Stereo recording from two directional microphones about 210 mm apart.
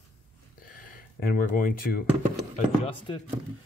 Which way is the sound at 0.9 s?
45° left (ahead or behind).